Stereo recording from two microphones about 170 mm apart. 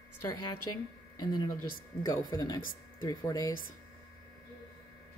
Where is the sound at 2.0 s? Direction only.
20° left (ahead or behind).